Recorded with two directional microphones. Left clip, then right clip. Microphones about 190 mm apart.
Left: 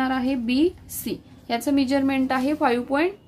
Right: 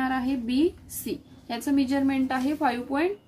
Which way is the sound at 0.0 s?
35° left (ahead or behind).